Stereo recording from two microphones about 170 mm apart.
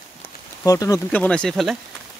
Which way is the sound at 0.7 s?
20° left (ahead or behind).